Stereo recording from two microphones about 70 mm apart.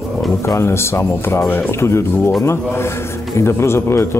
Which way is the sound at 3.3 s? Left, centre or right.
Left.